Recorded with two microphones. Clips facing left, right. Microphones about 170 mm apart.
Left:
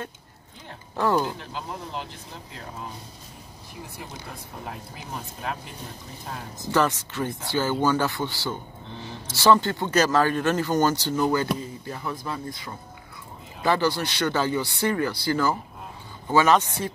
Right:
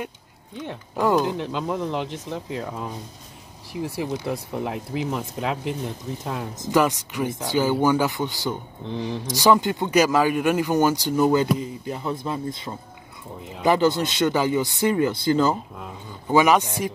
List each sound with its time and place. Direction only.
0.9 s a man's voice: 15° right (ahead or behind)
1.4 s speech: 70° right (ahead or behind)
6.7 s a man's voice: 15° right (ahead or behind)